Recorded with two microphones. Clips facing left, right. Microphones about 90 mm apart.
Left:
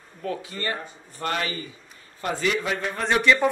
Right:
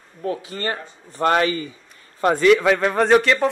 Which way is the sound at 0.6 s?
40° right (ahead or behind).